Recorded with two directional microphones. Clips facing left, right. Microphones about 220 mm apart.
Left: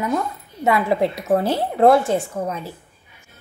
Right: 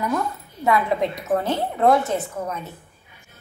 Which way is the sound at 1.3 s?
30° left (ahead or behind).